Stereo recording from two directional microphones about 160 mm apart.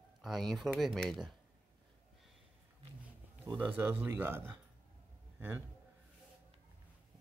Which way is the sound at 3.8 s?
15° right (ahead or behind).